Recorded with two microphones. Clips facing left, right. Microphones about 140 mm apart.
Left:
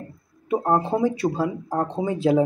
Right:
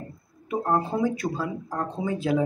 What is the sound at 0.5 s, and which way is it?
Speech, 30° left (ahead or behind).